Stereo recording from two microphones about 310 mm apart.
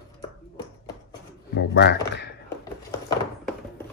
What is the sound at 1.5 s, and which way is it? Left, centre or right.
Speech, left.